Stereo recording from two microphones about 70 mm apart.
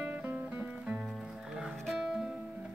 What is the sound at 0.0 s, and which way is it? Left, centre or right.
Music, centre.